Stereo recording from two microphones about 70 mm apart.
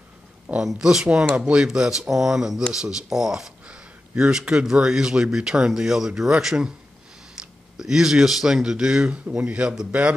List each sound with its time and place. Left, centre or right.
0.6 s speech: centre
7.7 s speech: centre